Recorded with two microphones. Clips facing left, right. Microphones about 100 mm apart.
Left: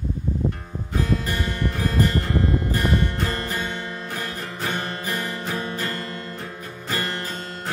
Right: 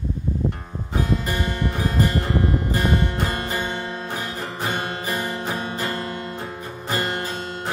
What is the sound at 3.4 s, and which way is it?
Music, 20° right (ahead or behind).